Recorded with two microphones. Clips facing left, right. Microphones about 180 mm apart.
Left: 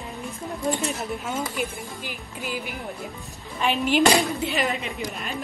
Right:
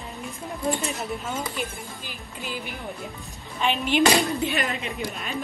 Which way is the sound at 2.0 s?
15° left (ahead or behind).